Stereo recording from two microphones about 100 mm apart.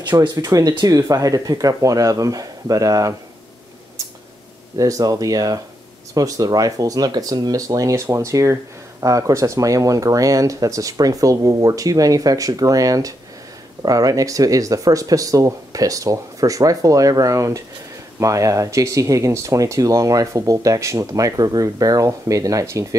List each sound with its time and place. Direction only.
0.2 s speech: 45° right (ahead or behind)
4.7 s speech: 35° right (ahead or behind)